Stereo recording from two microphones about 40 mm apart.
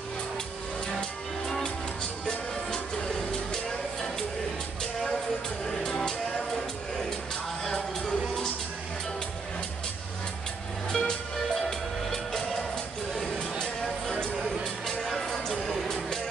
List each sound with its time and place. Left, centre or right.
2.2 s music: centre
5.7 s music: centre
7.6 s music: centre
10.9 s music: centre
13.2 s a sound: centre
14.6 s music: centre